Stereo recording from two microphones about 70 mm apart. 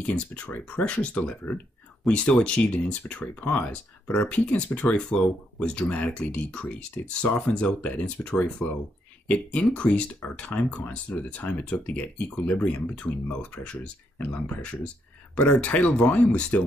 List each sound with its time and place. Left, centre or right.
0.0 s speech: left